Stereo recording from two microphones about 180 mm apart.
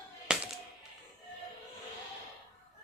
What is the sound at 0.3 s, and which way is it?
Music, 5° right (ahead or behind).